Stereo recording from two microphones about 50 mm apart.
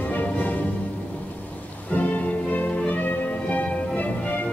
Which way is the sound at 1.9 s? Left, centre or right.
Left.